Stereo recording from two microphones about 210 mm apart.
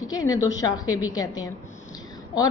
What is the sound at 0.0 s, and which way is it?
A woman's voice, 15° left (ahead or behind).